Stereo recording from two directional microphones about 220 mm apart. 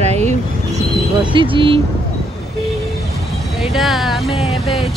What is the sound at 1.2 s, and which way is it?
Speech, 20° right (ahead or behind).